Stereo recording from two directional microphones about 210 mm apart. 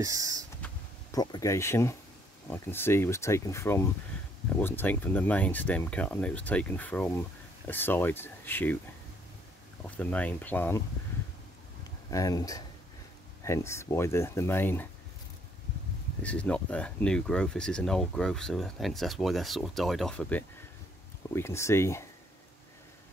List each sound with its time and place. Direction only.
0.0 s speech: 15° right (ahead or behind)
1.1 s speech: 20° left (ahead or behind)
9.8 s speech: 5° left (ahead or behind)
11.8 s a sound: 15° left (ahead or behind)
13.4 s speech: 15° left (ahead or behind)
16.2 s speech: 5° left (ahead or behind)